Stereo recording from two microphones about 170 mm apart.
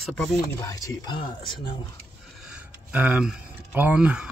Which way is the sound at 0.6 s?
20° left (ahead or behind).